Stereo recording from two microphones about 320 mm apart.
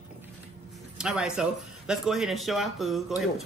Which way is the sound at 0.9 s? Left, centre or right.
Centre.